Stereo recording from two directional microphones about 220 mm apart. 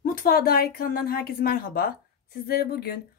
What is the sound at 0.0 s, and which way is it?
A woman's voice, 40° left (ahead or behind).